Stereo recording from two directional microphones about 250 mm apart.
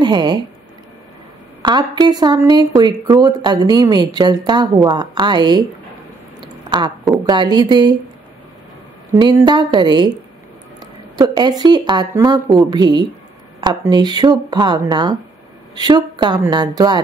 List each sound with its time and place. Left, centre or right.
0.0 s speech: centre
1.6 s speech: centre
6.7 s speech: centre
9.1 s speech: centre